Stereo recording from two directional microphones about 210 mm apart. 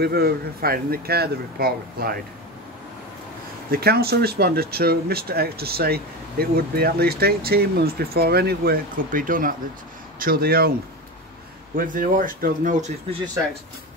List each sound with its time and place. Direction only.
0.0 s speech: 50° right (ahead or behind)
3.7 s speech: 50° right (ahead or behind)
11.7 s speech: 40° right (ahead or behind)